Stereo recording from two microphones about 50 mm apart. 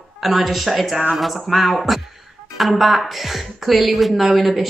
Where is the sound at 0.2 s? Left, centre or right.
Centre.